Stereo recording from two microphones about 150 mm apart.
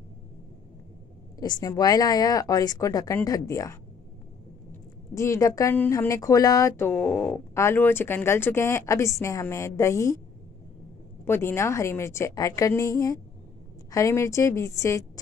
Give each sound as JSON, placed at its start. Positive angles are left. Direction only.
{"t": 1.4, "sound": "a woman's voice", "side_deg": 25}
{"t": 5.1, "sound": "a woman's voice", "side_deg": 20}
{"t": 11.2, "sound": "a woman's voice", "side_deg": 15}